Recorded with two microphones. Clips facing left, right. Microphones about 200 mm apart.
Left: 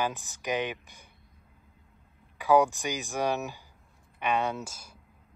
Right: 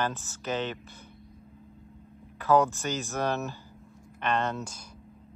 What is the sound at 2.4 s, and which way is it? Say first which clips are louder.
Speech: left 1 dB; 15° left (ahead or behind).